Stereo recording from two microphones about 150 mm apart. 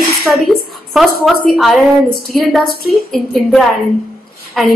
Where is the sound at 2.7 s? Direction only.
90° left.